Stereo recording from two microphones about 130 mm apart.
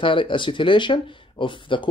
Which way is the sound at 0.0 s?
40° left (ahead or behind).